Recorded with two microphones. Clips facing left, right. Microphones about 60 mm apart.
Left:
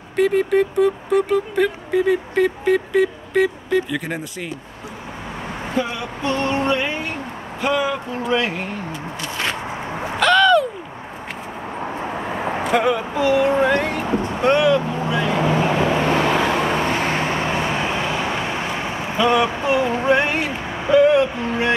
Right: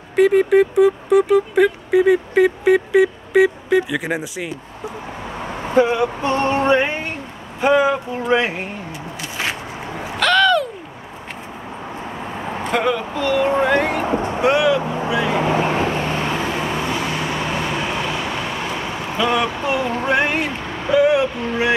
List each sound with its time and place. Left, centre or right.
0.1 s speech: centre
5.8 s a sound: right
6.6 s speech: right
10.1 s a sound: centre
12.7 s speech: centre
13.4 s speech: centre
16.1 s vehicle: left
17.7 s vehicle: left
19.1 s speech: centre
20.6 s a sound: centre
20.9 s speech: centre